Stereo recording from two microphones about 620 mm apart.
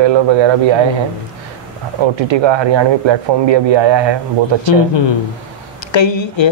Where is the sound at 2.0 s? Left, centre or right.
Right.